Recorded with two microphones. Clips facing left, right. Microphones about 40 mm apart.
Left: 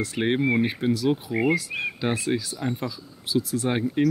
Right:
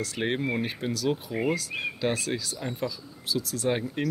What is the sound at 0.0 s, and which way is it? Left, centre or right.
Speech, left.